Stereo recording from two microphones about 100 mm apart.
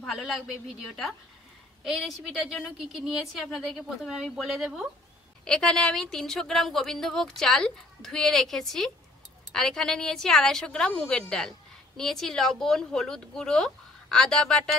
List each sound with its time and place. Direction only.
0.0 s a woman's voice: centre (ahead or behind)